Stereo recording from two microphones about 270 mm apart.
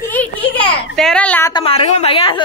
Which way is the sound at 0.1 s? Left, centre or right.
Centre.